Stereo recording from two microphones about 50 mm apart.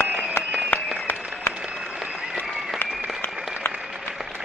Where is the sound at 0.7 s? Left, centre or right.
Left.